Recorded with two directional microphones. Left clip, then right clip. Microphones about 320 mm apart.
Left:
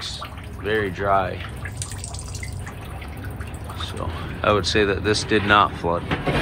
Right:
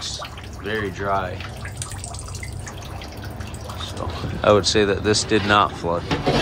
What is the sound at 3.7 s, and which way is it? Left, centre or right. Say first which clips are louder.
Speech: even; centre.